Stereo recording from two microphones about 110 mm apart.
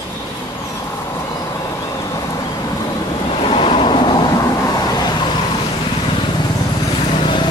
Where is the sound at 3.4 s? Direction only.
55° left (ahead or behind).